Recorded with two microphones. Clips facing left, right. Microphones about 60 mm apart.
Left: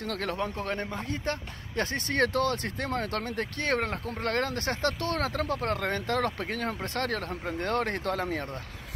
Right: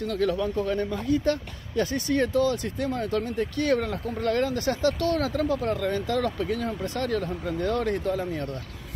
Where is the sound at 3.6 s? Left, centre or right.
Left.